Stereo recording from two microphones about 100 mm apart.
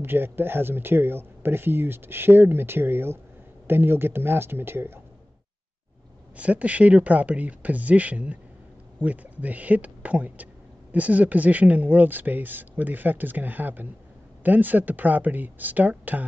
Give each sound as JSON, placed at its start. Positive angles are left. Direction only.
{"t": 0.0, "sound": "speech", "side_deg": -20}
{"t": 6.3, "sound": "speech", "side_deg": -15}